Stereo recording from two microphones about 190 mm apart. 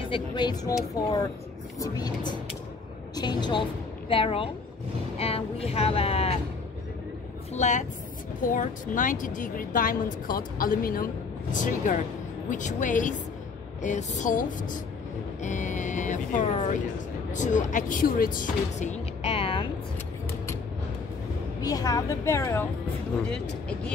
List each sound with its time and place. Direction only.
0.0 s speech: 25° left (ahead or behind)
7.5 s speech: 35° left (ahead or behind)
21.5 s a woman's voice: 20° left (ahead or behind)